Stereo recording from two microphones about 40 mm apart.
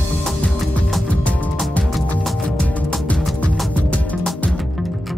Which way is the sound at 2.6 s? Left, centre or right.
Left.